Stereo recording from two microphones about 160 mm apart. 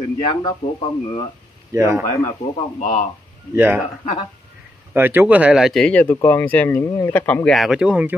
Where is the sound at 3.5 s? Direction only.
15° right (ahead or behind).